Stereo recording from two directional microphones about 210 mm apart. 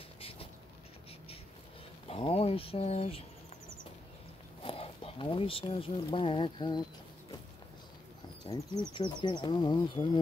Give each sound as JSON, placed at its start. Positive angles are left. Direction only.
{"t": 2.0, "sound": "insect", "side_deg": 25}
{"t": 4.6, "sound": "a sound", "side_deg": 25}
{"t": 6.1, "sound": "insect", "side_deg": 25}
{"t": 8.5, "sound": "insect", "side_deg": 20}